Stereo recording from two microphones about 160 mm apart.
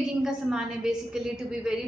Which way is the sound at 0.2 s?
5° right (ahead or behind).